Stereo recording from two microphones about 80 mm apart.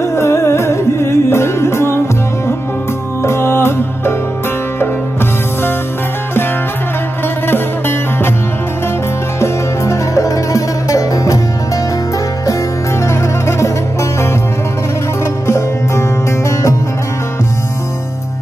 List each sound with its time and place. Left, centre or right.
0.0 s music: left
3.2 s music: left
9.4 s music: left
13.0 s music: left
15.4 s music: left